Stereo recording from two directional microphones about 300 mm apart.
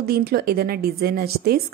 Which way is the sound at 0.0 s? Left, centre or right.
Right.